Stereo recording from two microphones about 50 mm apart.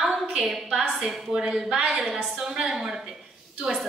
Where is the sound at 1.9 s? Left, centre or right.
Centre.